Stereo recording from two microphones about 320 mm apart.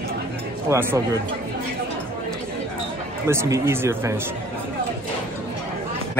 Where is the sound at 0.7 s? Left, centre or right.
Centre.